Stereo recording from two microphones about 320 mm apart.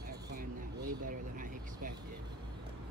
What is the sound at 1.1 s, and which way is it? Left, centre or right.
Vehicle, right.